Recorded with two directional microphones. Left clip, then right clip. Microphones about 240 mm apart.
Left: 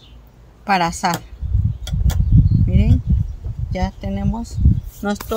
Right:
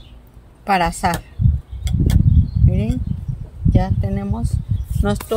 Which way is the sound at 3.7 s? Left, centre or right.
Centre.